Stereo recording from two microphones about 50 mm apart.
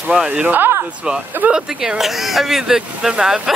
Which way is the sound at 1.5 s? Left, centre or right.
Centre.